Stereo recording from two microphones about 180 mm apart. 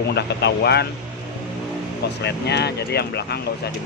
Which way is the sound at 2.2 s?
70° left (ahead or behind).